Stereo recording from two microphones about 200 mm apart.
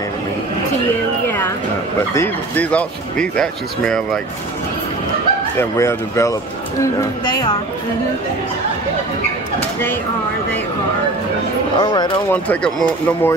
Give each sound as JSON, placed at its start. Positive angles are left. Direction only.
{"t": 2.1, "sound": "speech", "side_deg": 10}
{"t": 5.6, "sound": "speech", "side_deg": 15}
{"t": 11.8, "sound": "speech", "side_deg": 20}
{"t": 12.3, "sound": "speech", "side_deg": 5}